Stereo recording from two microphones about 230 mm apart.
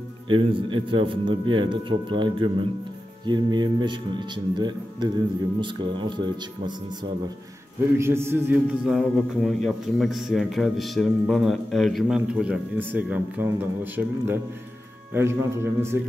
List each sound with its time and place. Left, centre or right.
0.3 s a man's voice: right
8.0 s a man's voice: centre